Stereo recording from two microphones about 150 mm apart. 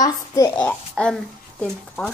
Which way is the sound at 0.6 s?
5° left (ahead or behind).